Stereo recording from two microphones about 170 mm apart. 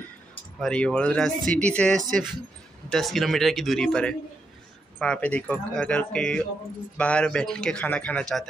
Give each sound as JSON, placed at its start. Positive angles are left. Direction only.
{"t": 0.6, "sound": "speech", "side_deg": 5}